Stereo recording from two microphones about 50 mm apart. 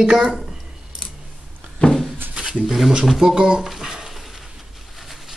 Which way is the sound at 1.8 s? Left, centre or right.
Left.